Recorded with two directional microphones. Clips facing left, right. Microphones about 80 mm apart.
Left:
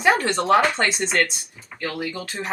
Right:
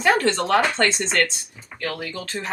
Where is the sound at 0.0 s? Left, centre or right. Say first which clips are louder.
Even; centre.